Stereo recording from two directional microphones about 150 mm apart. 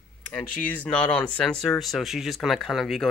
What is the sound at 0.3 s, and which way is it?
Speech, 5° left (ahead or behind).